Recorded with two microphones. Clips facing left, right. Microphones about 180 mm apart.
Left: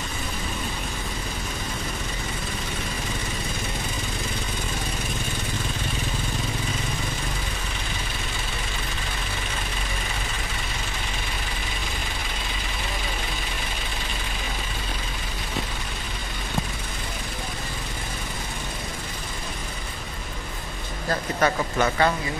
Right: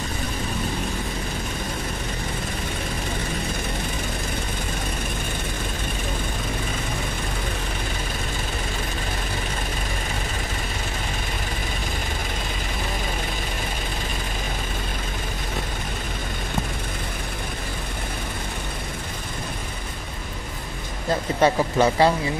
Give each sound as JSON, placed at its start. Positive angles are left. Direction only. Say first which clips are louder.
{"t": 21.1, "sound": "speech", "louder": "right 4 dB", "side_deg": -25}